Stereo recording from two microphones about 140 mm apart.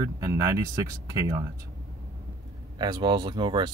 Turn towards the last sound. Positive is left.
turn(degrees=-35)  # may be behind; listen again after turning